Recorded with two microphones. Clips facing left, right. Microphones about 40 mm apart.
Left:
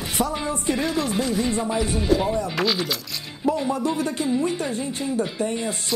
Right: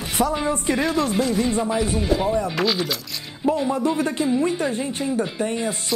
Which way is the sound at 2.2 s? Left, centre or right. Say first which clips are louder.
Right 2 dB; centre.